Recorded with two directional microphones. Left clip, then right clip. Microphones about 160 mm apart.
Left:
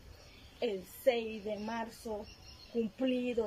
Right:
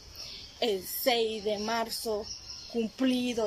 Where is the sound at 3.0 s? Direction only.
15° left (ahead or behind).